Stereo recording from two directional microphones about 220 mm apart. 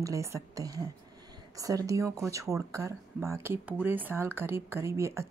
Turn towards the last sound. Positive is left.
turn(degrees=-10)  # may be behind; listen again after turning